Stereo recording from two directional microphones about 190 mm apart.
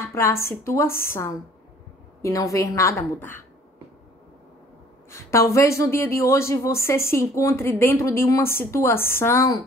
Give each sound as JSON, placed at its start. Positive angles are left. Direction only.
{"t": 0.0, "sound": "a woman's voice", "side_deg": 15}
{"t": 5.1, "sound": "a woman's voice", "side_deg": 15}